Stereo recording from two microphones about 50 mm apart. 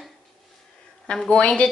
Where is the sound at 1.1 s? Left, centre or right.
Centre.